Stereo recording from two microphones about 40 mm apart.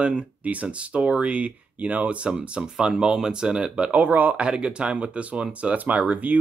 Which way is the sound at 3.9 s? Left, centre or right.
Right.